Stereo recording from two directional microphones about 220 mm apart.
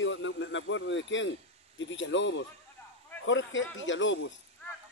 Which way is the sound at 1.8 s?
55° left (ahead or behind).